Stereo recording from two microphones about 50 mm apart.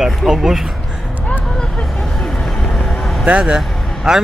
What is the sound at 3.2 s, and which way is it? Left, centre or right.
Speech, right.